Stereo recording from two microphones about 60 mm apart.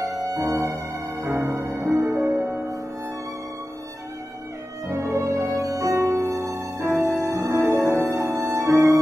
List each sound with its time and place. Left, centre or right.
0.0 s music: right
1.3 s music: right
1.6 s music: right
1.9 s music: centre
2.1 s music: right
4.8 s music: right